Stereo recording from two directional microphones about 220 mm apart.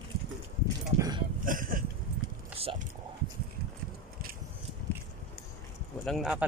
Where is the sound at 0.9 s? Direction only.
15° right (ahead or behind).